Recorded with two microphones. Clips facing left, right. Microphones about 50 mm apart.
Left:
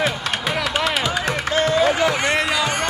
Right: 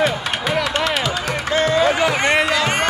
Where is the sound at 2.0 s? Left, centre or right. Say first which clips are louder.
Right 2 dB; centre.